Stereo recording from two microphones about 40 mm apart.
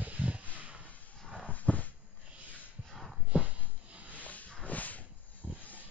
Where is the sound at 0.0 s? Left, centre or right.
Right.